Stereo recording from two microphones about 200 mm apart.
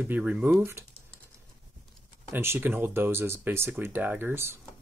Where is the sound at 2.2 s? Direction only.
10° right (ahead or behind).